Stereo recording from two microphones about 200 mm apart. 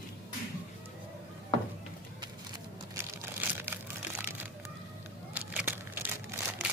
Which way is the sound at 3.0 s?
15° right (ahead or behind).